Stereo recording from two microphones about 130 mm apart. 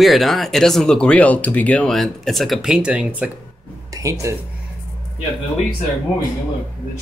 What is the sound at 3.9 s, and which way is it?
Speech, 25° right (ahead or behind).